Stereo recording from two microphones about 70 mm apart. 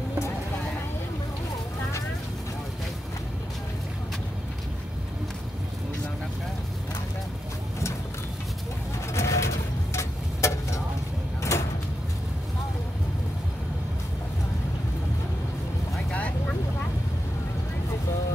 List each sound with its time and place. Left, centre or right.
9.1 s pigeon: left
9.9 s a sound: left
11.5 s sliding door: left
16.1 s vehicle: left